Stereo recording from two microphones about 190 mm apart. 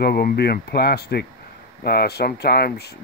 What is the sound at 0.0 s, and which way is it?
Speech, 55° left (ahead or behind).